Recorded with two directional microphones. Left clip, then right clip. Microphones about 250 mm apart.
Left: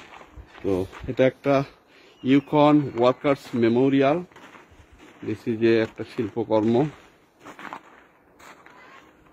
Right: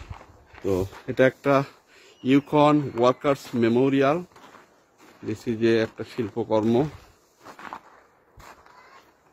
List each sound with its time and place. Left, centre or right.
0.7 s a man's voice: centre
5.2 s speech: centre
7.4 s walk: centre